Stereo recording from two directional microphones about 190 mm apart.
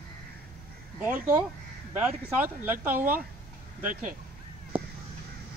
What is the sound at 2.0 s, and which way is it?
Speech, 10° right (ahead or behind).